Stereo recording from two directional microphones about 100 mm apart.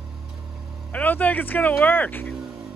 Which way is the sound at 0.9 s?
15° left (ahead or behind).